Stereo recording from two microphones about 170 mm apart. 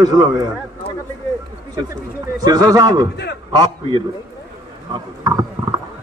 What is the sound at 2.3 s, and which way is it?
Speech, 25° right (ahead or behind).